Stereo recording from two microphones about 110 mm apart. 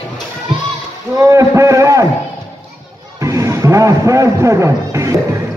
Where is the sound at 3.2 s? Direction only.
30° right (ahead or behind).